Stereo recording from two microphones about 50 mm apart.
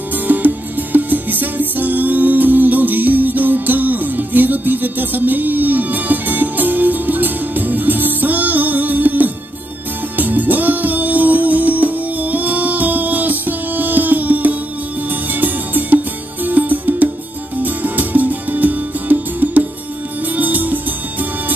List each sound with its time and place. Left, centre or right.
0.3 s music: right